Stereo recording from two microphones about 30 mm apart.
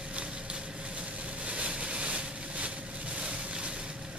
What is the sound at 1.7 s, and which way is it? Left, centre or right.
Vehicle, right.